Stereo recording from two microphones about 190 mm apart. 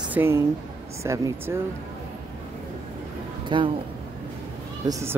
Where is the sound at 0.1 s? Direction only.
10° right (ahead or behind).